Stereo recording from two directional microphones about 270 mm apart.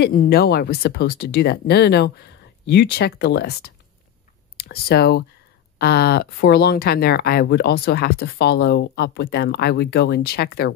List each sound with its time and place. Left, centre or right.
0.0 s speech: left